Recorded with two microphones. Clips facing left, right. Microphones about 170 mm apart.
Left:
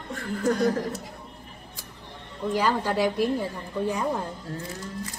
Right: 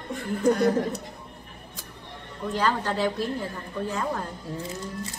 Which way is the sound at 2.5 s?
10° left (ahead or behind).